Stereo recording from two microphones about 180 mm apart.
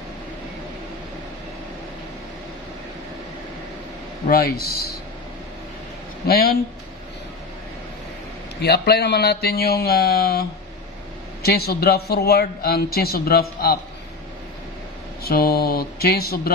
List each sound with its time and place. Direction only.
4.3 s a man's voice: 60° left (ahead or behind)
6.2 s a man's voice: 60° left (ahead or behind)
8.5 s a man's voice: 65° left (ahead or behind)
11.4 s a man's voice: 60° left (ahead or behind)
15.2 s a man's voice: 60° left (ahead or behind)